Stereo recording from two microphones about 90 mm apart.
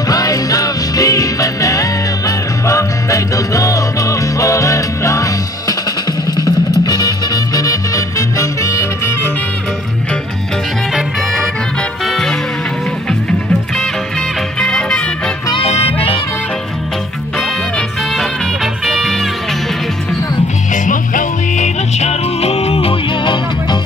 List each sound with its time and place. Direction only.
0.1 s music: 40° left (ahead or behind)
6.8 s music: 45° left (ahead or behind)
12.1 s music: 5° left (ahead or behind)
14.6 s music: 5° left (ahead or behind)
15.5 s music: 90° left
17.7 s music: centre (ahead or behind)
22.7 s music: 90° left; by 23.8 s 60° left (ahead or behind)